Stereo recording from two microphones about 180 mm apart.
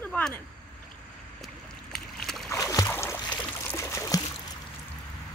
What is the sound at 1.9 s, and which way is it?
Boat, centre (ahead or behind).